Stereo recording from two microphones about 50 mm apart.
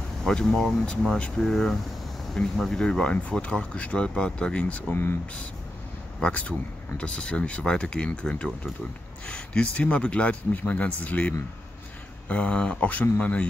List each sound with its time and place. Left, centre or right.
0.2 s speech: centre
2.8 s speech: centre
4.9 s speech: left
6.2 s speech: left